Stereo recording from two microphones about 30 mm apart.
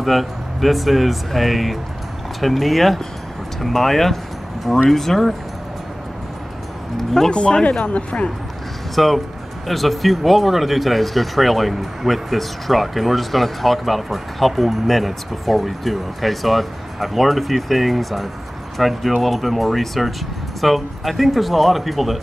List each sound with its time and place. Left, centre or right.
0.0 s speech: centre
7.2 s speech: left
7.8 s speech: left
8.9 s speech: centre